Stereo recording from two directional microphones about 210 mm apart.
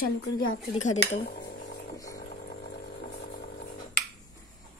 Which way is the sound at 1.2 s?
45° left (ahead or behind).